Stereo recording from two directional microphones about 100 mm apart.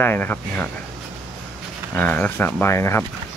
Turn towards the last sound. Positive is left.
turn(degrees=25)  # may be behind; listen again after turning